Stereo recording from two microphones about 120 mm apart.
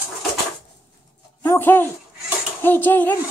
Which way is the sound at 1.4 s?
15° left (ahead or behind).